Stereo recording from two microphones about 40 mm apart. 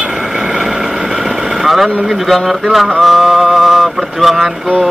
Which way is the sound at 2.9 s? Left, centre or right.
Centre.